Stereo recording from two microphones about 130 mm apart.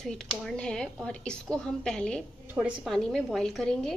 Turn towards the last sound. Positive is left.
turn(degrees=5)  # may be behind; listen again after turning